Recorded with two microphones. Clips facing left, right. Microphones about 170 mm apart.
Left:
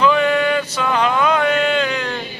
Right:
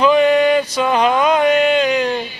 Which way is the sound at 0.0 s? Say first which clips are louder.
Right 4 dB; 15° right (ahead or behind).